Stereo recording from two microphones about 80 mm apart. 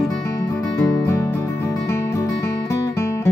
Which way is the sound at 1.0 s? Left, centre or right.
Left.